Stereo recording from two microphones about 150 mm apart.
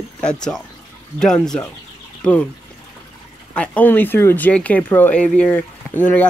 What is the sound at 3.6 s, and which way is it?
Speech, 10° left (ahead or behind).